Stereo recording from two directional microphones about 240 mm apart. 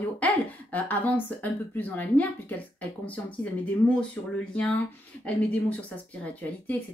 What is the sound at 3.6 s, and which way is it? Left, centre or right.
Speech, centre.